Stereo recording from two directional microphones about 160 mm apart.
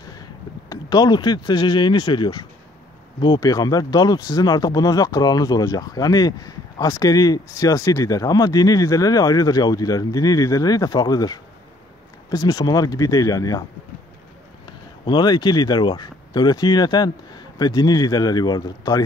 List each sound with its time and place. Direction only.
0.1 s speech: 25° left (ahead or behind)
14.7 s speech: 30° left (ahead or behind)